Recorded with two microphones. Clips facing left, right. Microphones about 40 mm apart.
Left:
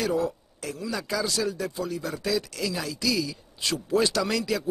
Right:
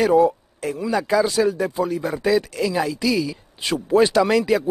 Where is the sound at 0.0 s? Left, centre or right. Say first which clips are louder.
Right 10 dB; right.